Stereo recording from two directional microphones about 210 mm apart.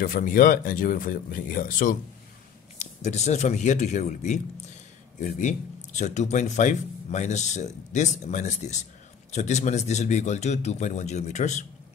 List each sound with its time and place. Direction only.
0.0 s speech: 40° left (ahead or behind)